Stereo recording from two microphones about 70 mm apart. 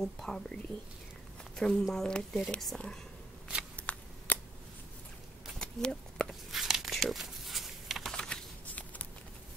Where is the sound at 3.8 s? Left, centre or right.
Left.